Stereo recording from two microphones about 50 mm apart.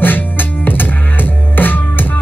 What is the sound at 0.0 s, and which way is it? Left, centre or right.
Music, left.